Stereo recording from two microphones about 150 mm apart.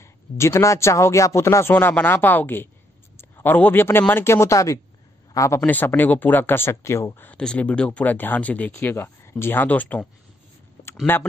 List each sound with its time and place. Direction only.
0.0 s speech: 20° left (ahead or behind)
11.1 s speech: 15° left (ahead or behind)